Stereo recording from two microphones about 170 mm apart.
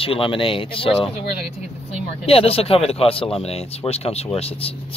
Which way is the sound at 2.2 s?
35° left (ahead or behind).